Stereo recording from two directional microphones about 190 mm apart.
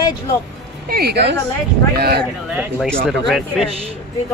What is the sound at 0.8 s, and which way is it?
Speech, 55° right (ahead or behind).